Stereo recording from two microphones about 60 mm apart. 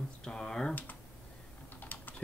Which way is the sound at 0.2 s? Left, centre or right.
Centre.